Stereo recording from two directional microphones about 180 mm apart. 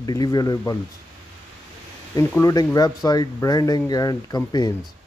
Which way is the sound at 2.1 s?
15° left (ahead or behind).